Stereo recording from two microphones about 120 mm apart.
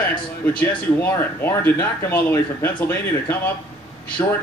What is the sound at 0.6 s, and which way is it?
Speech, 20° left (ahead or behind).